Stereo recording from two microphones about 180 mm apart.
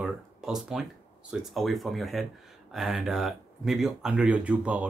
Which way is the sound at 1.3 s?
Centre (ahead or behind).